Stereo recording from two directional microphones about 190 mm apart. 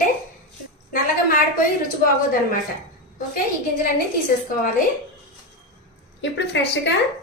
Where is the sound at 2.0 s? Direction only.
50° left (ahead or behind).